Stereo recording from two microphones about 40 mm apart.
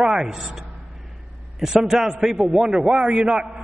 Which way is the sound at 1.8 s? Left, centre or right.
Centre.